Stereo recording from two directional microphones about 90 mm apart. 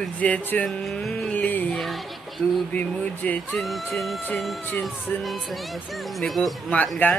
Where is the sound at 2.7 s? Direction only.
15° left (ahead or behind).